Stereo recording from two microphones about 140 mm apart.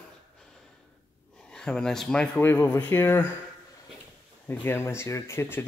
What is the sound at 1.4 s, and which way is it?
Speech, 5° left (ahead or behind).